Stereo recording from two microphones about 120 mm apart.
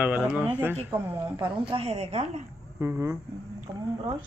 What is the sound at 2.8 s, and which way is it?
Speech, 20° right (ahead or behind).